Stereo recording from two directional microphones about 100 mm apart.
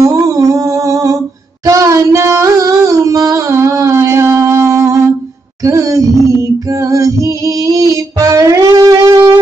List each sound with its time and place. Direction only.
0.1 s humming: 35° right (ahead or behind)
1.7 s a sound: 35° right (ahead or behind)
6.7 s music: 35° right (ahead or behind)